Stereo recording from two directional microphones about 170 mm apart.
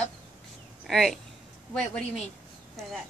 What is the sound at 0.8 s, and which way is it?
Speech, centre (ahead or behind).